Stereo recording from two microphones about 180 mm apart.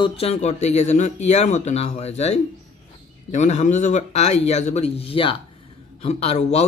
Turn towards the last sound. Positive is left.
turn(degrees=35)  # may be behind; listen again after turning